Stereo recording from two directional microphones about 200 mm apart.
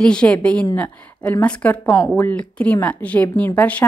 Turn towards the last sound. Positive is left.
turn(degrees=10)  # may be behind; listen again after turning